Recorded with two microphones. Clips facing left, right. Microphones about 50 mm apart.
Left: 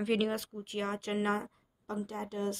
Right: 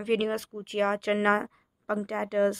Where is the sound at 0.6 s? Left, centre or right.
Right.